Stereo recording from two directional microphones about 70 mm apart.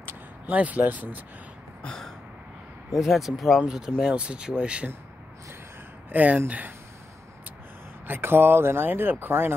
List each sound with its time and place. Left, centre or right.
0.0 s speech: right
1.8 s throat clearing: centre
2.9 s speech: centre
6.0 s speech: right
8.1 s speech: right